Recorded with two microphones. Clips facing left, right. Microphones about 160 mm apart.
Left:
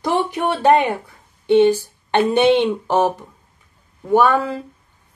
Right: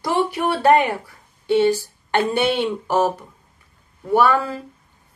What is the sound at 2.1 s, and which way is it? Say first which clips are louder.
Speech: left 5 dB; 20° left (ahead or behind).